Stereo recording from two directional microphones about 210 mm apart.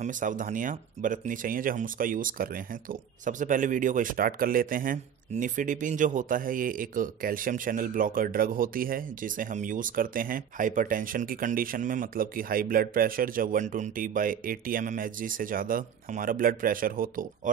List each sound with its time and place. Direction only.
0.0 s speech: 35° right (ahead or behind)